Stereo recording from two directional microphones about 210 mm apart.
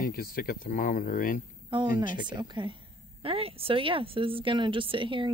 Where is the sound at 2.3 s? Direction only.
20° right (ahead or behind).